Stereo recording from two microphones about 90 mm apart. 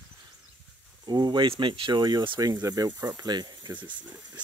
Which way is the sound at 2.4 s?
45° right (ahead or behind).